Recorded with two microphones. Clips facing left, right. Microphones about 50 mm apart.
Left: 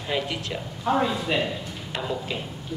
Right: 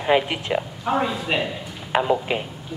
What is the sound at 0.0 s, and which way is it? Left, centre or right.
Speech, right.